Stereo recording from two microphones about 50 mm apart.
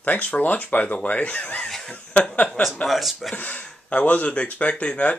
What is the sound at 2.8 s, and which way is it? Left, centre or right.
Speech, centre.